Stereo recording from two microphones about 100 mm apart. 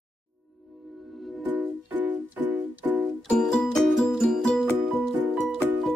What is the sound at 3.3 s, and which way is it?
Music, 5° left (ahead or behind).